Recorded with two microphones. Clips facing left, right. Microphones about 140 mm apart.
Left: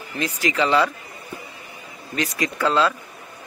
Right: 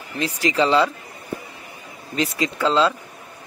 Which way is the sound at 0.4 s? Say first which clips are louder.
Right 2 dB; 35° right (ahead or behind).